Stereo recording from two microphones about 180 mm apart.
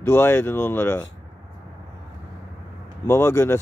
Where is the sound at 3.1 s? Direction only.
15° left (ahead or behind).